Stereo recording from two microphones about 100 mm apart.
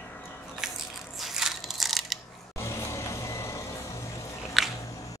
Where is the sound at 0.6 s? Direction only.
5° right (ahead or behind).